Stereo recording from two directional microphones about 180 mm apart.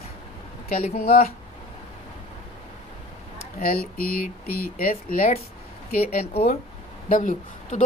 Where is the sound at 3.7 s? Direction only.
55° left (ahead or behind).